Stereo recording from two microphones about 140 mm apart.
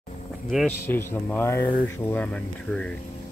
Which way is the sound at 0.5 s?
5° right (ahead or behind).